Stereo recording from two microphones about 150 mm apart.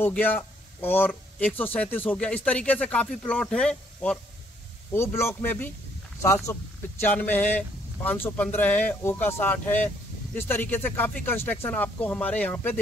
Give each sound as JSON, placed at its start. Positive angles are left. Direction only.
{"t": 0.0, "sound": "speech", "side_deg": 10}
{"t": 4.9, "sound": "speech", "side_deg": 15}